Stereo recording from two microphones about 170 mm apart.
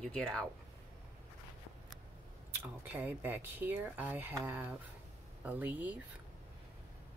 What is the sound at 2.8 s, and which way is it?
Speech, 10° right (ahead or behind).